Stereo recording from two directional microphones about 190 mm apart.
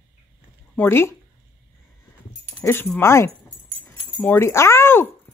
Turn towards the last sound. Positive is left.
turn(degrees=15)  # may be behind; listen again after turning